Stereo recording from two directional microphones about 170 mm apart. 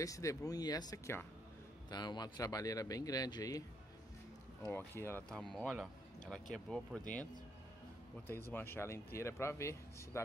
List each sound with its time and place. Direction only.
0.0 s a man's voice: 20° left (ahead or behind)
4.6 s speech: 10° left (ahead or behind)
8.3 s speech: 15° left (ahead or behind)